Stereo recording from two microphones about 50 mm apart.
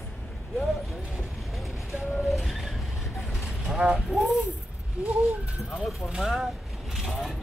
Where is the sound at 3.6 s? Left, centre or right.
Centre.